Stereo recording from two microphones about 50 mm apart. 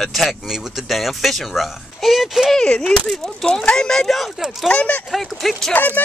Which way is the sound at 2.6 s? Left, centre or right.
Centre.